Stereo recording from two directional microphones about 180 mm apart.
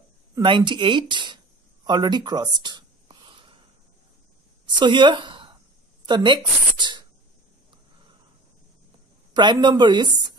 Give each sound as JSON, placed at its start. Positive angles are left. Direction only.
{"t": 0.3, "sound": "speech", "side_deg": -25}
{"t": 1.9, "sound": "a sound", "side_deg": -25}
{"t": 4.7, "sound": "speech", "side_deg": -25}
{"t": 9.3, "sound": "speech", "side_deg": -25}